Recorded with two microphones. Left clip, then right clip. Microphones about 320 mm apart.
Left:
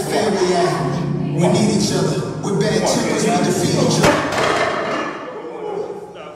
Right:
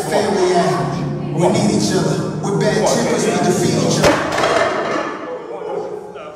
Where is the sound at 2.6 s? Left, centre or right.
Right.